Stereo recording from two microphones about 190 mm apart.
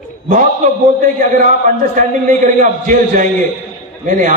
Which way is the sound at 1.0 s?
40° right (ahead or behind).